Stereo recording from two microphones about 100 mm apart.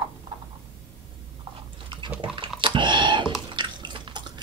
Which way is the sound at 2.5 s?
55° right (ahead or behind).